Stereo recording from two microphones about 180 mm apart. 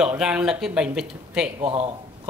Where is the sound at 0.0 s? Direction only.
5° right (ahead or behind).